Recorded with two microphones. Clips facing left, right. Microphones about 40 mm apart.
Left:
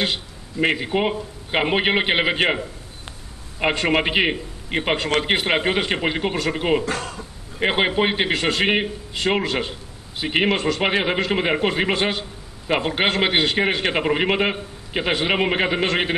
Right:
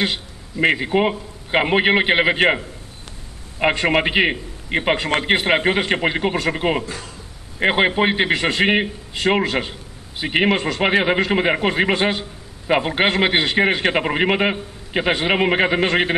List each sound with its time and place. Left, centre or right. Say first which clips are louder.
0.0 s a man's voice: right 2 dB; centre
6.9 s speech: left 6 dB; left
7.6 s a man's voice: right 3 dB; centre